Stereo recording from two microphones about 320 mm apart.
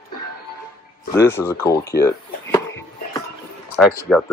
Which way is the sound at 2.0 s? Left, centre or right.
Centre.